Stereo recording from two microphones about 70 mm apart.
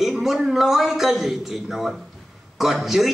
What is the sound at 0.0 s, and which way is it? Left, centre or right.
A man's voice, centre.